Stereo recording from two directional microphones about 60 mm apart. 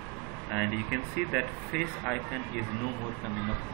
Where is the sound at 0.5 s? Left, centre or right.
Centre.